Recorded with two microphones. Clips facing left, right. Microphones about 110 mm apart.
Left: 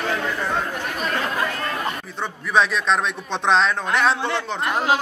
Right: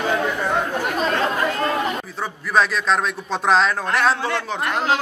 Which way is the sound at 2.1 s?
Centre (ahead or behind).